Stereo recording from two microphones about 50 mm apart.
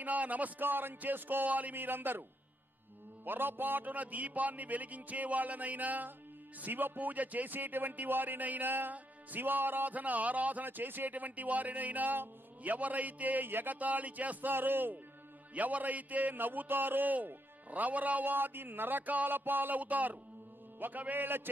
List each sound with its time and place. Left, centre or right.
0.0 s speech: right
3.3 s speech: right
14.5 s speech: right